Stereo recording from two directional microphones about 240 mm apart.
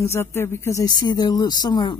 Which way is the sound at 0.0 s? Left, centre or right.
Centre.